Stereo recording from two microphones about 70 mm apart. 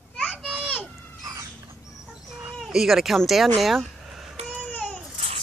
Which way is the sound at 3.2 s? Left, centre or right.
Centre.